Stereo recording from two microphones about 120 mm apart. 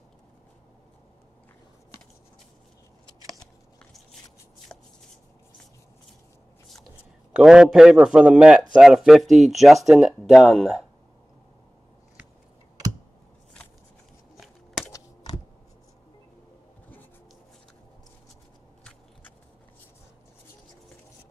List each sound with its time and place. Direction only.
4.7 s shuffling cards: 10° left (ahead or behind)
7.3 s a man's voice: 5° right (ahead or behind)
14.9 s computer keyboard: 25° left (ahead or behind)